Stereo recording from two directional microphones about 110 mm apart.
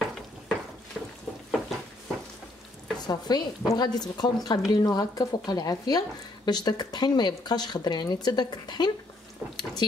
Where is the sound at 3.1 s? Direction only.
40° left (ahead or behind).